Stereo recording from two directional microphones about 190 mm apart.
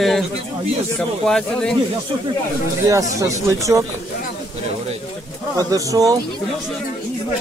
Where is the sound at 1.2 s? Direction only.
5° left (ahead or behind).